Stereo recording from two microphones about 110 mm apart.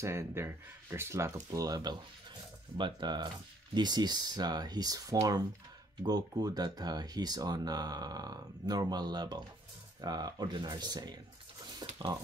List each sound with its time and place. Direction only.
0.0 s speech: 25° right (ahead or behind)
11.8 s mechanisms: 40° right (ahead or behind)